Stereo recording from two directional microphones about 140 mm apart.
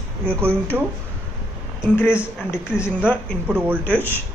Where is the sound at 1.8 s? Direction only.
15° left (ahead or behind).